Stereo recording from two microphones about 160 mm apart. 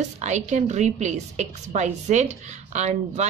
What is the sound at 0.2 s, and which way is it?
A woman's voice, 45° right (ahead or behind).